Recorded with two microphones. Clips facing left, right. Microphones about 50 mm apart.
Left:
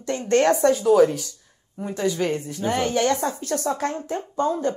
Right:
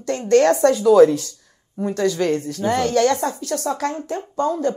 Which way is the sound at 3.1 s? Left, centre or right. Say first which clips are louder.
Right 2 dB; right.